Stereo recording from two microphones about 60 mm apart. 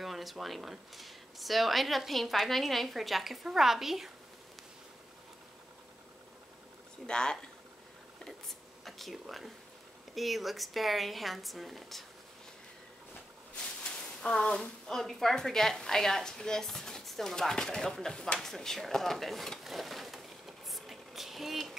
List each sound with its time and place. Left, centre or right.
0.0 s speech: centre
7.1 s speech: centre
8.8 s speech: centre
13.8 s speech: centre